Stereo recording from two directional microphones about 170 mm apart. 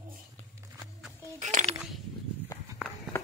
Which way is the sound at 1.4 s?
45° right (ahead or behind).